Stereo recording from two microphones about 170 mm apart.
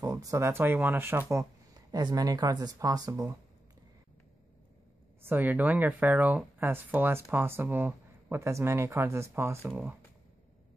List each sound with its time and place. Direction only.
0.0 s speech: 20° right (ahead or behind)
5.2 s speech: 10° right (ahead or behind)